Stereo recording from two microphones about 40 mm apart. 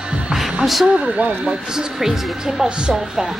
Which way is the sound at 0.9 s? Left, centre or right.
Right.